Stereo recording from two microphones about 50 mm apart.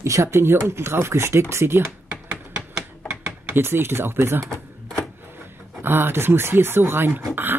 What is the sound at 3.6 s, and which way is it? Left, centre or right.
Speech, right.